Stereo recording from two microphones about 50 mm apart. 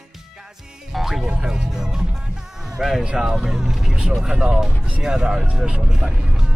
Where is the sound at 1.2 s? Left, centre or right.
Centre.